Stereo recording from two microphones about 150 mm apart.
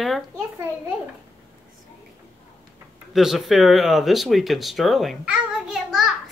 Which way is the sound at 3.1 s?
Centre (ahead or behind).